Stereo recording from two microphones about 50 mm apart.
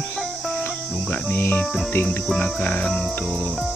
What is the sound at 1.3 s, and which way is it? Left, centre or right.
Cricket, left.